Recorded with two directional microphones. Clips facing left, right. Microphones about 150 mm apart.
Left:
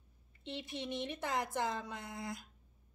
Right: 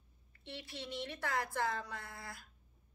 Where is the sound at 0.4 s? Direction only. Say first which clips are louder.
Left 5 dB; 20° left (ahead or behind).